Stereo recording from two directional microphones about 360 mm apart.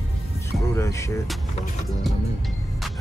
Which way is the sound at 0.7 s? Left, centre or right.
Centre.